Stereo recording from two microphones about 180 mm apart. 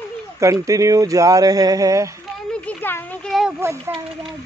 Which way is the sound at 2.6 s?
10° left (ahead or behind).